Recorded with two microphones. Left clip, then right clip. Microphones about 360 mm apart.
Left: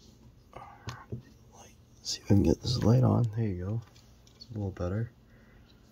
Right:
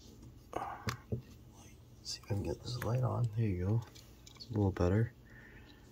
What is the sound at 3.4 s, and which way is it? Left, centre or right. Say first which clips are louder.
Speech: left 2 dB; centre.